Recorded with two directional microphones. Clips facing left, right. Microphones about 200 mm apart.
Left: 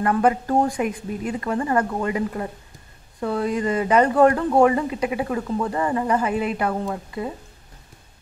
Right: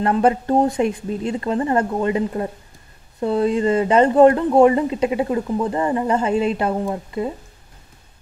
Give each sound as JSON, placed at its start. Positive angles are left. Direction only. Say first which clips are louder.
{"t": 0.0, "sound": "speech", "louder": "right 2 dB", "side_deg": -25}